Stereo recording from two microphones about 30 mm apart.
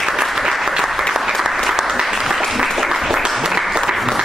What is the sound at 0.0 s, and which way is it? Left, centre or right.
Applause, centre.